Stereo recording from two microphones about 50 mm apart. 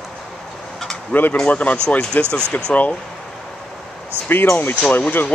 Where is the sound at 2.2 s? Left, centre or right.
Left.